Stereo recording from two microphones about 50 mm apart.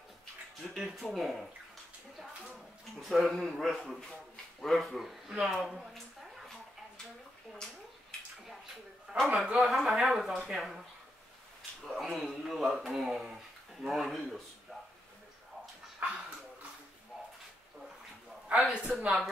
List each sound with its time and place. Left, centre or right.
0.7 s speech: centre
3.0 s speech: centre
9.2 s speech: centre
11.8 s a man's voice: centre
16.0 s dog: right
18.7 s speech: right
19.0 s speech: centre